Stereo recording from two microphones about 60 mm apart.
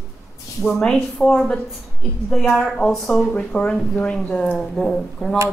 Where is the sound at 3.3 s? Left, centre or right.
Centre.